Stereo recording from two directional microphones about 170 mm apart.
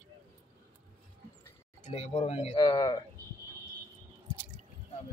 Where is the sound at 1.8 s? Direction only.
40° left (ahead or behind).